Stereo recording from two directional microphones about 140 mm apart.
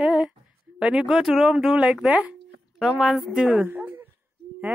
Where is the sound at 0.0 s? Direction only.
5° right (ahead or behind).